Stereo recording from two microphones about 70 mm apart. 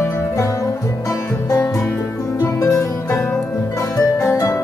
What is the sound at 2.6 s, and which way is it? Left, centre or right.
Music, left.